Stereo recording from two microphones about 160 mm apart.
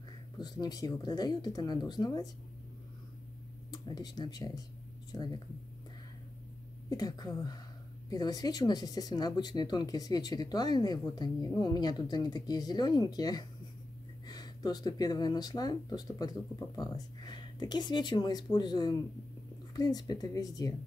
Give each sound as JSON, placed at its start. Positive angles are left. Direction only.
{"t": 0.4, "sound": "speech", "side_deg": 25}
{"t": 3.7, "sound": "speech", "side_deg": 25}
{"t": 6.9, "sound": "speech", "side_deg": 25}